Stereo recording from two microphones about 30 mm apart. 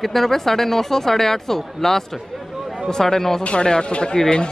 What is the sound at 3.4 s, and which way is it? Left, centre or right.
Speech, left.